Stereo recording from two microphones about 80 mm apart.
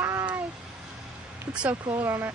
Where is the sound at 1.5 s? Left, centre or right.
Centre.